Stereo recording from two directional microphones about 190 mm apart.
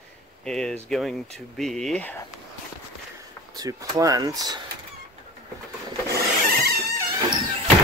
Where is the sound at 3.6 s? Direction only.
20° right (ahead or behind).